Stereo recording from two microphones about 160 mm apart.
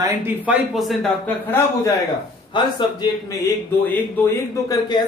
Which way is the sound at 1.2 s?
15° left (ahead or behind).